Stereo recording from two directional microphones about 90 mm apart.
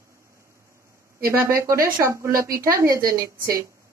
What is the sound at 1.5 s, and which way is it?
A woman's voice, 30° right (ahead or behind).